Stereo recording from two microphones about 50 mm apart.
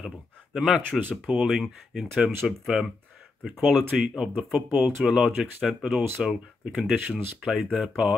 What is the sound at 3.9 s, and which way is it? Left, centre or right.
Speech, centre.